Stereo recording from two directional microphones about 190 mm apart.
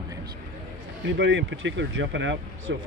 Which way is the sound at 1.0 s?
70° right (ahead or behind).